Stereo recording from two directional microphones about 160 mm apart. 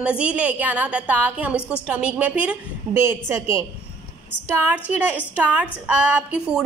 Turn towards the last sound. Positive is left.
turn(degrees=-5)  # may be behind; listen again after turning